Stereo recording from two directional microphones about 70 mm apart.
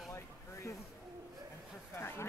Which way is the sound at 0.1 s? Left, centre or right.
Left.